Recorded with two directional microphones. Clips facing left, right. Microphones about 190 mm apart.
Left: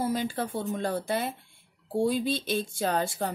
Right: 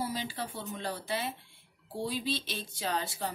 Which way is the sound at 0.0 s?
50° left (ahead or behind).